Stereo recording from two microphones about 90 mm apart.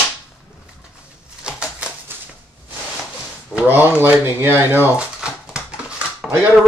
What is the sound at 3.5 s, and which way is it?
Speech, 20° right (ahead or behind).